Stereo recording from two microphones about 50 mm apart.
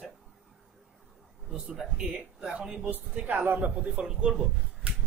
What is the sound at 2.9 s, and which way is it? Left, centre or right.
Speech, right.